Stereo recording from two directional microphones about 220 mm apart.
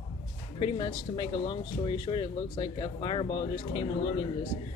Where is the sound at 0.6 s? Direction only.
20° left (ahead or behind).